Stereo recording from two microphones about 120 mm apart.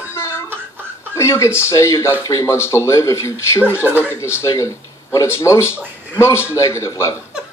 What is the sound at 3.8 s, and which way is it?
Speech, 15° right (ahead or behind).